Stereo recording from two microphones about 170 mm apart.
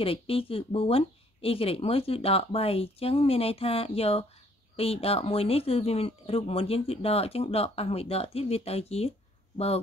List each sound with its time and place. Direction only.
0.0 s speech: 35° left (ahead or behind)